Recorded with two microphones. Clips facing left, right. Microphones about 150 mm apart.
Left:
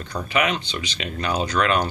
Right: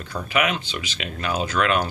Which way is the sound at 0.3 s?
5° right (ahead or behind).